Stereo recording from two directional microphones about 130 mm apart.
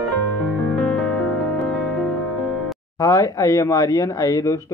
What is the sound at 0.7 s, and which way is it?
Music, centre (ahead or behind).